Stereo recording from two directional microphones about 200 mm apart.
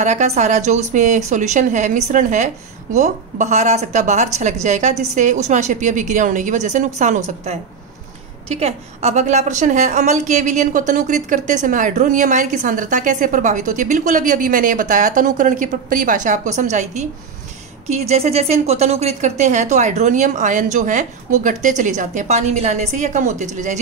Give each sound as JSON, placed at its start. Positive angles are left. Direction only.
{"t": 0.0, "sound": "a woman's voice", "side_deg": -35}